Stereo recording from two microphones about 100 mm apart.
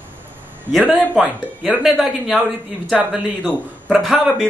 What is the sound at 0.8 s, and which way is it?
A man's voice, 15° right (ahead or behind).